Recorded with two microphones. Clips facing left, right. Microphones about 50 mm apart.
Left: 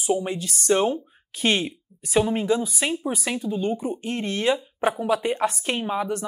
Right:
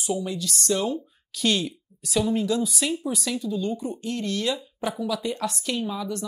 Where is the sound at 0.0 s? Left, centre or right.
Left.